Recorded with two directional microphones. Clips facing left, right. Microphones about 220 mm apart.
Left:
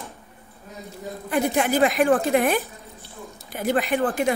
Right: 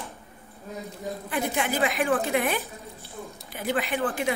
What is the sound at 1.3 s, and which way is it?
A woman's voice, 45° left (ahead or behind).